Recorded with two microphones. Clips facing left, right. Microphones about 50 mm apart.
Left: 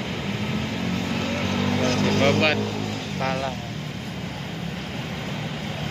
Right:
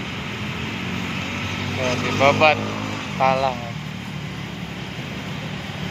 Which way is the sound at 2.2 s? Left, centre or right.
Right.